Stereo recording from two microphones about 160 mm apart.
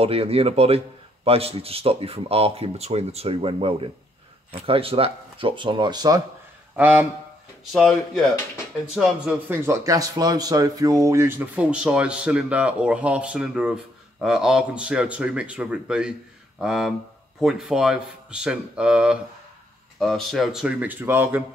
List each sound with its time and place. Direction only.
0.0 s a man's voice: 35° right (ahead or behind)
6.8 s speech: 10° right (ahead or behind)
7.7 s speech: centre (ahead or behind)
9.5 s speech: 15° right (ahead or behind)